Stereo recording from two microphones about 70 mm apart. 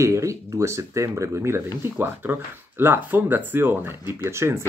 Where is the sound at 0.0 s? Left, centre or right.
Right.